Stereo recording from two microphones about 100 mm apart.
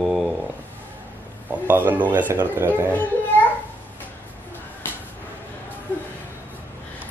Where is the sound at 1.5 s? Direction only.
20° right (ahead or behind).